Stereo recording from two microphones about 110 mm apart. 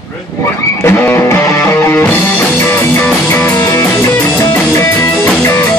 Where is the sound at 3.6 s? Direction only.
30° left (ahead or behind).